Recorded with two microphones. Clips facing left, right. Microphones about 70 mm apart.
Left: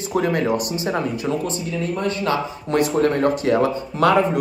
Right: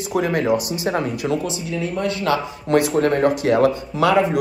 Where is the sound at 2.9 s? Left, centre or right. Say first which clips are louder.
Right 1 dB; right.